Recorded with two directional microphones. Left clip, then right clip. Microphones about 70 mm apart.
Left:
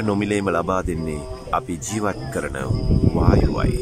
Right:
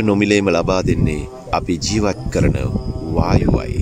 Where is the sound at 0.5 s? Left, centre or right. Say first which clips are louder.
Right 4 dB; right.